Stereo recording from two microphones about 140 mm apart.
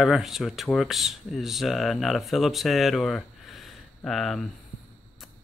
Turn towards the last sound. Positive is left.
turn(degrees=0)  # may be behind; listen again after turning